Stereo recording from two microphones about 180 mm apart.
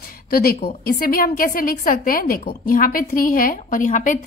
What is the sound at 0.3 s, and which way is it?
A woman's voice, 55° left (ahead or behind).